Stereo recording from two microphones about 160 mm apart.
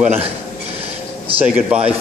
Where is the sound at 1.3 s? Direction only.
35° right (ahead or behind).